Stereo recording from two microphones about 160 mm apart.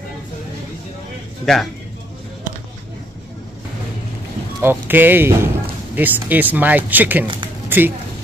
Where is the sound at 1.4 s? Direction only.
Centre (ahead or behind).